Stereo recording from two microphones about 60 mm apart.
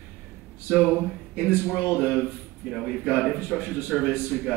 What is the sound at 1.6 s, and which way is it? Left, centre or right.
Speech, right.